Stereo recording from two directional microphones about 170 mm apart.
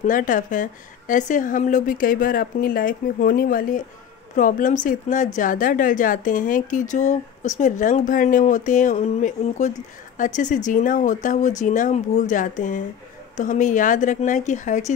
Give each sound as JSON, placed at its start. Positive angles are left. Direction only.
{"t": 0.0, "sound": "a woman's voice", "side_deg": 50}